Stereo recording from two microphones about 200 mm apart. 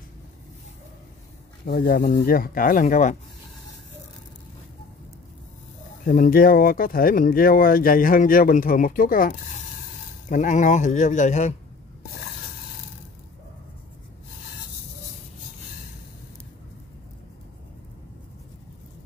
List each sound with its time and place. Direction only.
1.7 s speech: 45° left (ahead or behind)
6.0 s speech: 45° left (ahead or behind)